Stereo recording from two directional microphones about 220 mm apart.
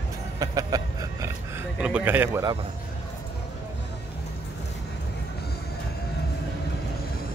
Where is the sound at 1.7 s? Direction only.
5° right (ahead or behind).